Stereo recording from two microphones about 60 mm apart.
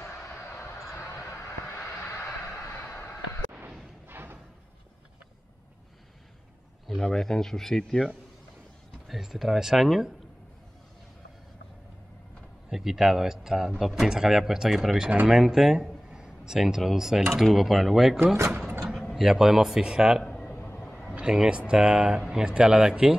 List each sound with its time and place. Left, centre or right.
0.0 s a sound: left
1.2 s vehicle: left
4.1 s music: right
7.0 s speech: centre
9.0 s speech: centre
12.6 s a man's voice: centre
20.2 s a sound: centre
20.5 s vehicle: left
20.8 s a sound: left
21.1 s a man's voice: centre